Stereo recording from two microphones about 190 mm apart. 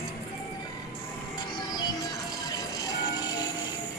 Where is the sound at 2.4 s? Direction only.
20° left (ahead or behind).